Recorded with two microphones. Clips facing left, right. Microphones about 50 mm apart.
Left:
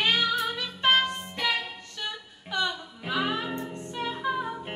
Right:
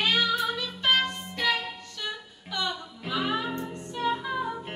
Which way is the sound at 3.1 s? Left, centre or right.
Left.